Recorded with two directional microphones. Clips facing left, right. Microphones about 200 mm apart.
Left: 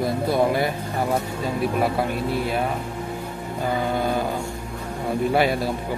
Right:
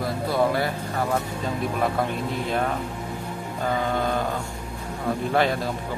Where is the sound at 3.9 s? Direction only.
10° left (ahead or behind).